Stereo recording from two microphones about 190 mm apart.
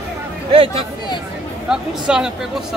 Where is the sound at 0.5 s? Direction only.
30° right (ahead or behind).